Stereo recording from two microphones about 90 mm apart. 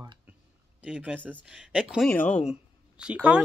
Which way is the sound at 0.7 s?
15° right (ahead or behind).